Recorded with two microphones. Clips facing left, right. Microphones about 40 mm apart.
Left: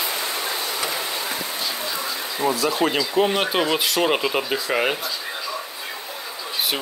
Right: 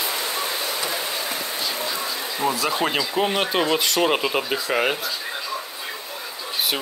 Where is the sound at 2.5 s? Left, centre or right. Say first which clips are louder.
Left 1 dB; centre.